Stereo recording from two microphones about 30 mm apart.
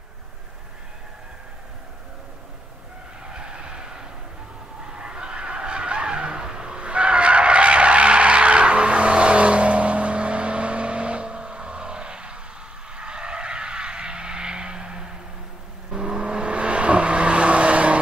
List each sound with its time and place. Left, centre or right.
3.3 s vehicle: right
6.9 s skidding: right
12.9 s vehicle: right